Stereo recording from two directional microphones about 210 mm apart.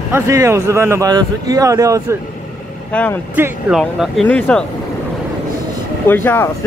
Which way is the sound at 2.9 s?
10° left (ahead or behind).